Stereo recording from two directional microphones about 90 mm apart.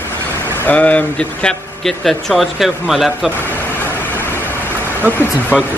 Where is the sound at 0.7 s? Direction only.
15° left (ahead or behind).